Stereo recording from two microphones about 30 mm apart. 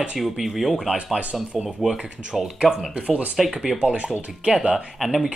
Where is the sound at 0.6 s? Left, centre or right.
Centre.